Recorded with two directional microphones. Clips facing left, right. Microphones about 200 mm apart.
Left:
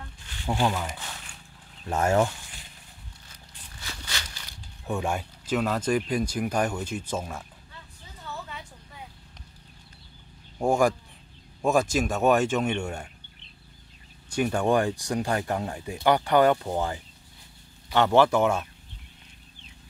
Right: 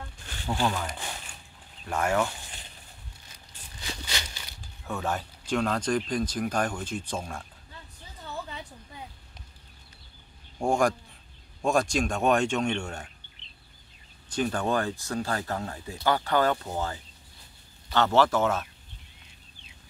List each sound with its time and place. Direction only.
0.5 s speech: 20° left (ahead or behind)
1.9 s speech: 25° left (ahead or behind)
3.8 s a sound: 20° right (ahead or behind)
4.8 s speech: 15° left (ahead or behind)
10.6 s speech: 5° left (ahead or behind)
14.3 s speech: 10° left (ahead or behind)